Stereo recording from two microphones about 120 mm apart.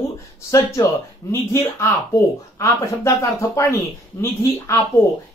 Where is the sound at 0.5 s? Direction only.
25° left (ahead or behind).